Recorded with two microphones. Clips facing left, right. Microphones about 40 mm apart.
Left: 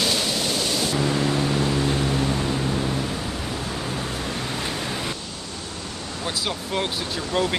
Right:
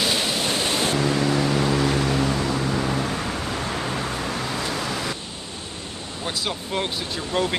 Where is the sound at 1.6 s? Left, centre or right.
Right.